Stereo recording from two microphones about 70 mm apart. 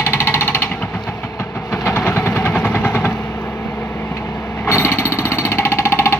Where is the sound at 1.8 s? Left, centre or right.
Left.